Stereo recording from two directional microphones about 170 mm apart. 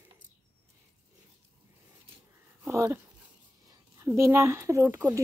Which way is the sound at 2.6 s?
15° right (ahead or behind).